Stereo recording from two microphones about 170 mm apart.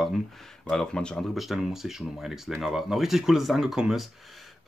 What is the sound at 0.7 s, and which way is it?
Speech, 5° left (ahead or behind).